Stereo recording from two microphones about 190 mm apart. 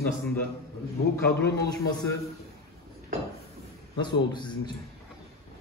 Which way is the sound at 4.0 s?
25° left (ahead or behind).